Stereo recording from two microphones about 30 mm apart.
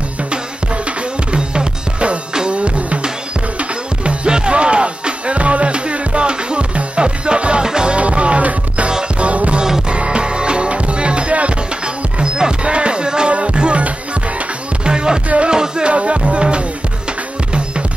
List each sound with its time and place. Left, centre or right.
1.3 s music: right
2.5 s music: right
7.6 s music: right
7.9 s music: right
9.8 s music: right
12.4 s music: right
13.3 s music: right
14.9 s music: right
15.2 s music: right
15.5 s music: right
15.9 s music: right